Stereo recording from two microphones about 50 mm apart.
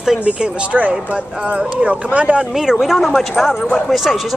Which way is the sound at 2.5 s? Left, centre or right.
Centre.